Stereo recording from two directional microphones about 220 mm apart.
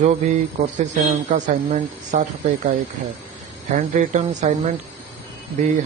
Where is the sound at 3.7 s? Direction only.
30° right (ahead or behind).